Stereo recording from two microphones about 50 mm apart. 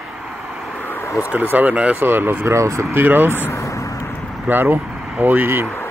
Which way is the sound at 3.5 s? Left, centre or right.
Left.